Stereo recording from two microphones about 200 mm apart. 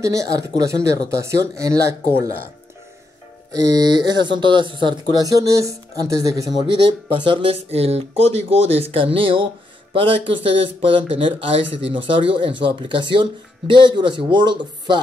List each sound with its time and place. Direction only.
0.0 s speech: 15° right (ahead or behind)
3.5 s speech: 20° right (ahead or behind)
7.2 s speech: 30° right (ahead or behind)